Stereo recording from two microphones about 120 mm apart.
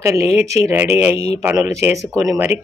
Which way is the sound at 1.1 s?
60° left (ahead or behind).